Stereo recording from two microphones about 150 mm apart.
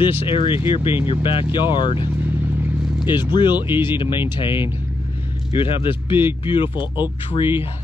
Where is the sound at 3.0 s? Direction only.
30° left (ahead or behind).